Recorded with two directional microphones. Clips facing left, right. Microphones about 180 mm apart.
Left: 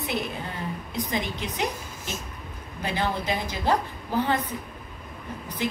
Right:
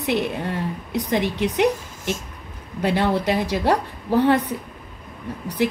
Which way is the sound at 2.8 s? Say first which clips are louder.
Right 8 dB; 70° right (ahead or behind).